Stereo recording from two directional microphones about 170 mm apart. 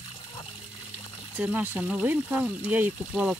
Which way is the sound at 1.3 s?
10° right (ahead or behind).